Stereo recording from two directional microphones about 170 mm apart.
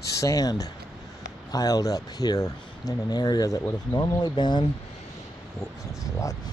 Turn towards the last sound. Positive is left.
turn(degrees=20)  # may be behind; listen again after turning